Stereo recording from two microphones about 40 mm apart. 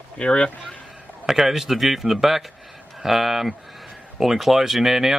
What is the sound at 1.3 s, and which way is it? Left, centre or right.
Speech, centre.